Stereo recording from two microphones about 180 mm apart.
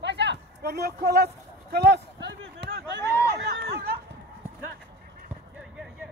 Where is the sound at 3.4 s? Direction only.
65° right (ahead or behind).